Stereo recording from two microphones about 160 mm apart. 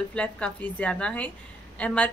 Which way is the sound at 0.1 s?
5° left (ahead or behind).